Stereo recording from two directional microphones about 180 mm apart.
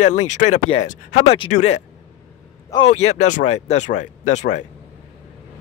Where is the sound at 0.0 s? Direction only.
40° left (ahead or behind).